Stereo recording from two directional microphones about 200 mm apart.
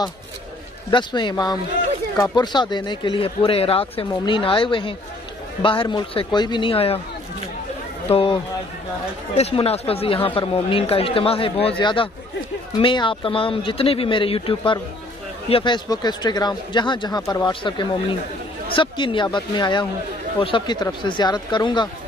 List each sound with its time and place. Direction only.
0.8 s speech: 20° left (ahead or behind)
8.1 s speech: 25° left (ahead or behind)
9.4 s speech: 30° left (ahead or behind)